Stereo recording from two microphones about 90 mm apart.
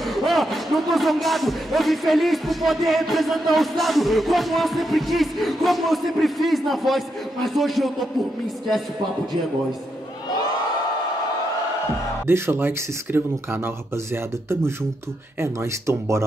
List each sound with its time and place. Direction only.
0.0 s speech: centre (ahead or behind)
12.3 s speech: 25° right (ahead or behind)